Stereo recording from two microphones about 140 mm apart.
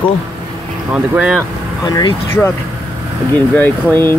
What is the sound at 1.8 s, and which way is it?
Speech, 30° left (ahead or behind).